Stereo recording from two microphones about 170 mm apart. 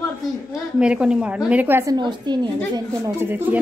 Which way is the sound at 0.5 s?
5° right (ahead or behind).